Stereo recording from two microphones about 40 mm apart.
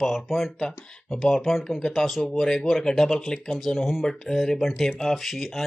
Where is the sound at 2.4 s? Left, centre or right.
Centre.